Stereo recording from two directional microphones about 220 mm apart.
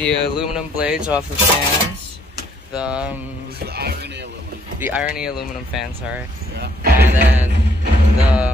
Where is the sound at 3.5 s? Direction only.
45° right (ahead or behind).